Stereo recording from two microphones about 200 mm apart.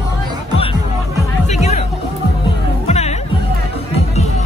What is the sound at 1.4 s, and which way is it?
Music, 35° left (ahead or behind).